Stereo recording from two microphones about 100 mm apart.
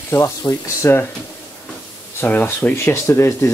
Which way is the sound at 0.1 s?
25° left (ahead or behind).